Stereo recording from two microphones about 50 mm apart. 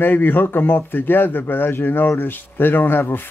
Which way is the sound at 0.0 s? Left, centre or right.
Left.